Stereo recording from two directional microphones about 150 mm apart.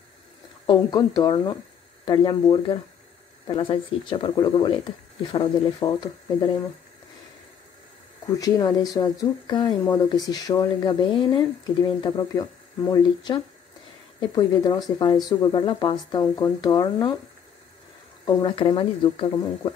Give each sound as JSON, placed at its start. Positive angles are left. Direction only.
{"t": 0.7, "sound": "speech", "side_deg": 25}
{"t": 8.3, "sound": "speech", "side_deg": 25}
{"t": 18.2, "sound": "speech", "side_deg": 35}